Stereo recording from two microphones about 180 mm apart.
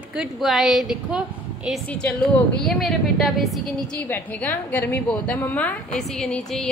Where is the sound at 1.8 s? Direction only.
10° left (ahead or behind).